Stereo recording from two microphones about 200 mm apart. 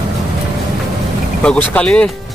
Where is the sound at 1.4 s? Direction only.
5° left (ahead or behind).